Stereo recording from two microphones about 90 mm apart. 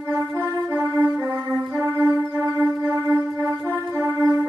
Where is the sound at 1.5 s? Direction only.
35° right (ahead or behind).